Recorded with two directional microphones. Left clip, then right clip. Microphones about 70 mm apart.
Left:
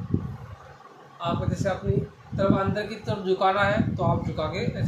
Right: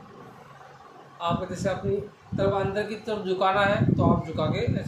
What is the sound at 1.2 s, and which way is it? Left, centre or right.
A man's voice, centre.